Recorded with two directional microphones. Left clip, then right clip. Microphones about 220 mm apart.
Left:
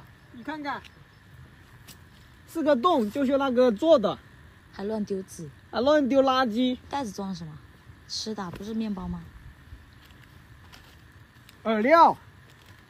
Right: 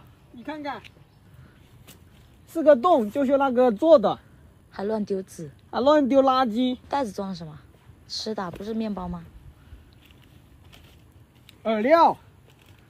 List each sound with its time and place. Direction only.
0.4 s speech: 5° left (ahead or behind)
2.5 s speech: 5° right (ahead or behind); by 4.2 s 20° right (ahead or behind)
4.7 s a woman's voice: 10° left (ahead or behind)
5.7 s speech: 30° right (ahead or behind)
6.9 s a woman's voice: 15° left (ahead or behind)
11.6 s speech: centre (ahead or behind)